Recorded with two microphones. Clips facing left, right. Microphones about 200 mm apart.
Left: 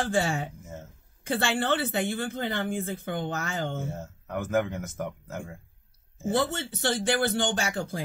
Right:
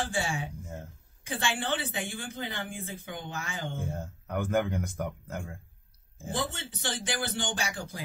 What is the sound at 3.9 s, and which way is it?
Speech, 5° left (ahead or behind).